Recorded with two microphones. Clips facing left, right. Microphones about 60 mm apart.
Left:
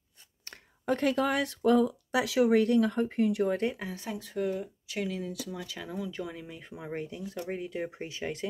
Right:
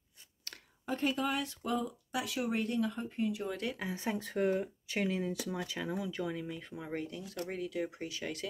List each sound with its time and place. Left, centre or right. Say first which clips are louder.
0.8 s speech: left 6 dB; left
3.9 s speech: right 1 dB; right
4.2 s speech: even; right
5.8 s speech: left 2 dB; centre
6.1 s speech: right 1 dB; centre; by 8.5 s left